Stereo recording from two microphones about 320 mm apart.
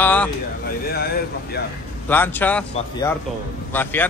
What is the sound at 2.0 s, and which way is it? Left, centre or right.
Speech, centre.